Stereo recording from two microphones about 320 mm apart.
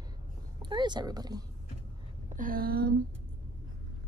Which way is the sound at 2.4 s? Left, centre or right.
Right.